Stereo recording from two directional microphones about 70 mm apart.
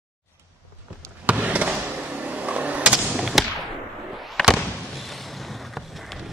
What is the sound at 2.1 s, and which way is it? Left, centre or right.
Vehicle, right.